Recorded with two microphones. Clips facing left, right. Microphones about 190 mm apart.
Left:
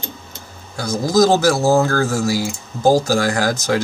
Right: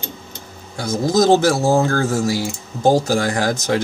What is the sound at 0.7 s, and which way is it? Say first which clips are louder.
Speech: left 1 dB; 25° right (ahead or behind).